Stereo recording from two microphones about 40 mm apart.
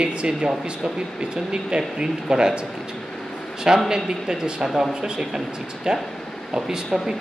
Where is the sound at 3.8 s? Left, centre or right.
Centre.